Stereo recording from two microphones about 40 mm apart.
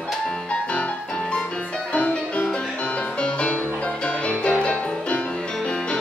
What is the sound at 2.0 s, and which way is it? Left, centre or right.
Music, left.